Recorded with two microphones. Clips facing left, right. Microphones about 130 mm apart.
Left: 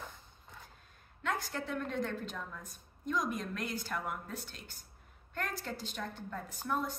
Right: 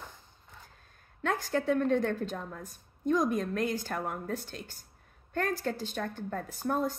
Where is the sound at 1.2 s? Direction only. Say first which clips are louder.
Right 7 dB; 45° right (ahead or behind).